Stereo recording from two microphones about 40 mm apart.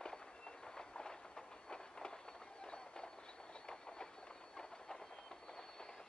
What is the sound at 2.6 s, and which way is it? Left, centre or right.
Run, left.